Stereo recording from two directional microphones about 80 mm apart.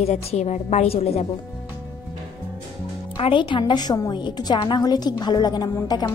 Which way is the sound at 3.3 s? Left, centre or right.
Left.